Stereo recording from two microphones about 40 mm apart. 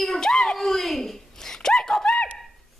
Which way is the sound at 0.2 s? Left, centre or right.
Centre.